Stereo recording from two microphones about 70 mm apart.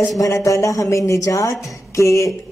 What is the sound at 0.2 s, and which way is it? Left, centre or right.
Speech, left.